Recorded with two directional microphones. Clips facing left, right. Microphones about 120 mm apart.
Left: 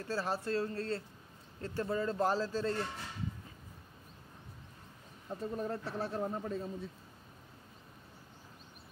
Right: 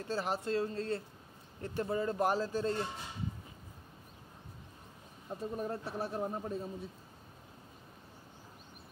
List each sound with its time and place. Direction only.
0.0 s speech: 20° right (ahead or behind)
5.3 s speech: 10° right (ahead or behind)